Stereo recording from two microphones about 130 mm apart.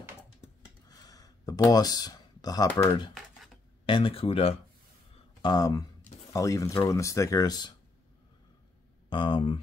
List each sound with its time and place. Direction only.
0.8 s a sound: 30° left (ahead or behind)
3.8 s speech: 45° left (ahead or behind)
5.4 s speech: 30° left (ahead or behind)
9.1 s speech: 35° left (ahead or behind)